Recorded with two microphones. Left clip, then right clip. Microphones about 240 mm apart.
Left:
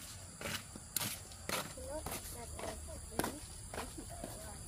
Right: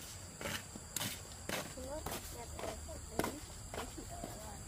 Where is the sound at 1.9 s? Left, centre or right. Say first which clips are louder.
Even; centre.